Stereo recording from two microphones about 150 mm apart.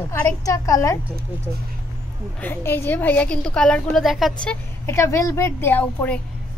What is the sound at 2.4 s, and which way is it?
A woman's voice, 15° left (ahead or behind).